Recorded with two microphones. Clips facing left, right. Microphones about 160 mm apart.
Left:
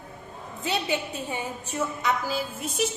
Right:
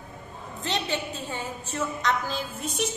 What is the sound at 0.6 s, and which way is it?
A woman's voice, 10° left (ahead or behind).